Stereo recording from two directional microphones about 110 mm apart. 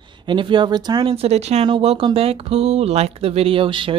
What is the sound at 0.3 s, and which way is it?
Speech, 45° right (ahead or behind).